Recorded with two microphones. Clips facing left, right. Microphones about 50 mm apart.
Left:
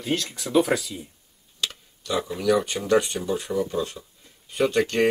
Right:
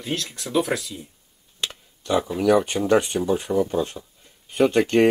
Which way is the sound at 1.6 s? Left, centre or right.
Right.